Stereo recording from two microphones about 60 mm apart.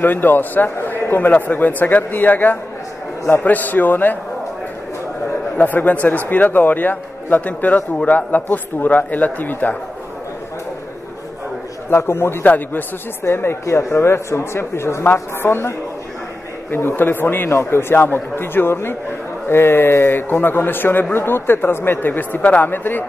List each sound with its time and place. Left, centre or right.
0.0 s a man's voice: left
5.6 s a man's voice: left
11.9 s speech: left
12.4 s a man's voice: left
13.2 s speech: left
16.7 s a man's voice: left
20.2 s a man's voice: left